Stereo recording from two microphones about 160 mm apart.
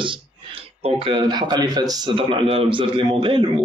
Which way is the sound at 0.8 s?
35° right (ahead or behind).